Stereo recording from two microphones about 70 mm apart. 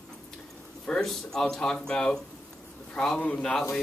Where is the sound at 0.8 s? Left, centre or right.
Centre.